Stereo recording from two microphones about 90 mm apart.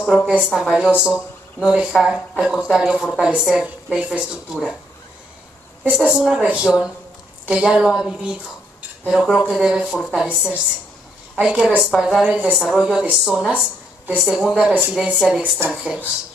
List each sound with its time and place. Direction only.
0.1 s speech: 10° right (ahead or behind)
5.9 s speech: 10° right (ahead or behind)
10.2 s speech: 15° right (ahead or behind)
15.0 s speech: 10° right (ahead or behind)